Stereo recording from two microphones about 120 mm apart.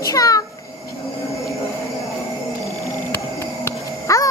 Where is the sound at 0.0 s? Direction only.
30° left (ahead or behind).